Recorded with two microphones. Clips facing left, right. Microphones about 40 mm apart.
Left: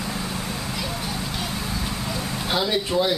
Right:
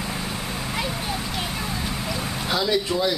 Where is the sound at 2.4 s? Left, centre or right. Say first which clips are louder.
Right 1 dB; centre.